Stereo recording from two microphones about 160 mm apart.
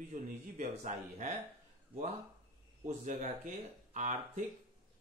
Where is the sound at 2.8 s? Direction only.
45° right (ahead or behind).